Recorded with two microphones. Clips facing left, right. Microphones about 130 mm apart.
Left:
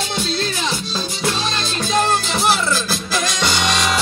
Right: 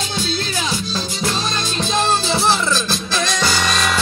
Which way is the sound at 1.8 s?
20° right (ahead or behind).